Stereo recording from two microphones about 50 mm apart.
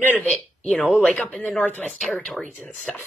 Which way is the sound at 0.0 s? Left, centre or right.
Left.